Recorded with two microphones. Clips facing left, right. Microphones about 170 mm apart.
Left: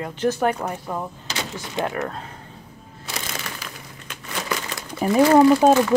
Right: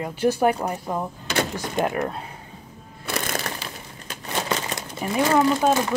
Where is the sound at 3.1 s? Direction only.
55° right (ahead or behind).